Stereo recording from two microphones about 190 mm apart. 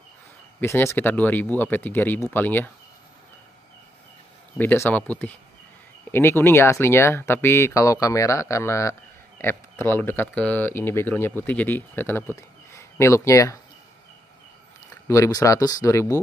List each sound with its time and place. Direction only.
0.6 s speech: 10° left (ahead or behind)
4.6 s speech: 10° left (ahead or behind)
15.0 s speech: 15° left (ahead or behind)